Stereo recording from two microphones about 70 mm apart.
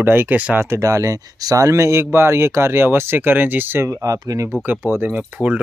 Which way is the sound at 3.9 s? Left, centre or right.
Right.